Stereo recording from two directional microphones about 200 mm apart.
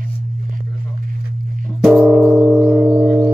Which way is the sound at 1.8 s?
Centre (ahead or behind).